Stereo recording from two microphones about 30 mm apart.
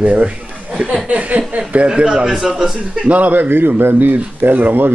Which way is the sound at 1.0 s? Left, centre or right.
Right.